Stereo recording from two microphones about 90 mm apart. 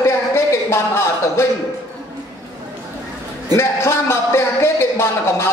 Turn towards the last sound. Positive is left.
turn(degrees=30)  # may be behind; listen again after turning